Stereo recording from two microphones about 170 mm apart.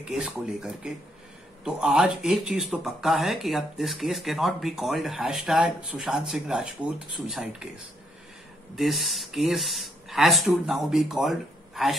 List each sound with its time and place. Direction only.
0.0 s speech: 5° right (ahead or behind)
8.7 s speech: centre (ahead or behind)